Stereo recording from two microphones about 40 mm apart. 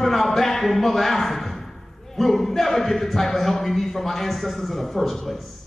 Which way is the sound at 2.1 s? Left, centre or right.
Centre.